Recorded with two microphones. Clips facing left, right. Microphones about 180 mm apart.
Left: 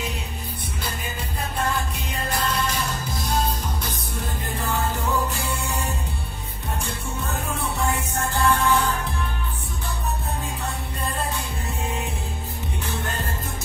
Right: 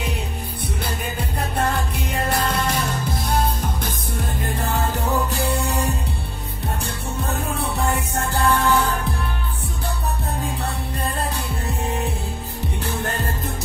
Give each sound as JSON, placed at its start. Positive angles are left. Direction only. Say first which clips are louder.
{"t": 1.6, "sound": "music", "louder": "right 3 dB", "side_deg": -65}
{"t": 4.6, "sound": "music", "louder": "right 1 dB", "side_deg": -40}
{"t": 8.3, "sound": "music", "louder": "right 2 dB", "side_deg": -35}
{"t": 12.8, "sound": "music", "louder": "right 4 dB", "side_deg": -35}